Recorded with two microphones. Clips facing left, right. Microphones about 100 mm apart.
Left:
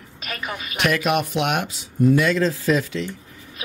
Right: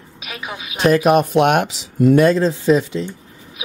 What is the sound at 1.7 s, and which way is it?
Speech, 90° right.